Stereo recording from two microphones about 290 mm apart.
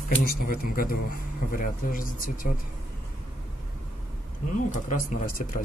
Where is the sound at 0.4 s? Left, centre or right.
Left.